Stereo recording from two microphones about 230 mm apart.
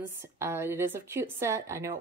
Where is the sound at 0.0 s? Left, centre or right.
Centre.